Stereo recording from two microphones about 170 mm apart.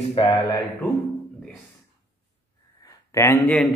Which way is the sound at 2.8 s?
15° left (ahead or behind).